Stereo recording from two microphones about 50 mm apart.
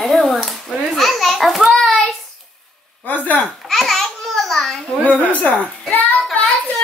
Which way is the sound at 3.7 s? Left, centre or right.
Centre.